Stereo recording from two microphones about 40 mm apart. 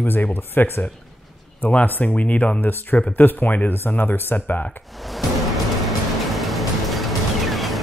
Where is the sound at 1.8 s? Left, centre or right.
Left.